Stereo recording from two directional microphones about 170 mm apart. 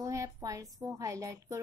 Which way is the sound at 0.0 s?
20° right (ahead or behind).